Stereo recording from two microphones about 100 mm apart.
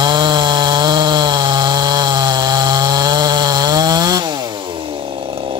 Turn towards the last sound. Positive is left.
turn(degrees=-40)  # may be behind; listen again after turning